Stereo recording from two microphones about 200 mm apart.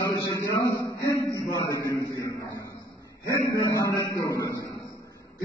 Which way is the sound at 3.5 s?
15° left (ahead or behind).